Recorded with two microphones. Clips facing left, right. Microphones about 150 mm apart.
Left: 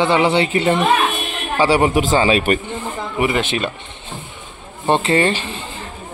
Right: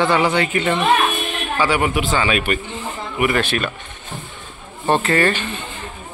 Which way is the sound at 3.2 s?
20° left (ahead or behind).